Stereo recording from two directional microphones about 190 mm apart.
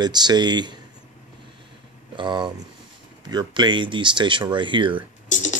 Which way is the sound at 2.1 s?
25° right (ahead or behind).